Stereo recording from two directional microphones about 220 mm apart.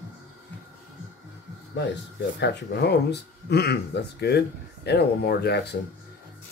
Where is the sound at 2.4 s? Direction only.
50° left (ahead or behind).